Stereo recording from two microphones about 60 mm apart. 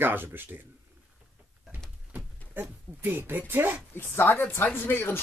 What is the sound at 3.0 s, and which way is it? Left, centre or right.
Speech, right.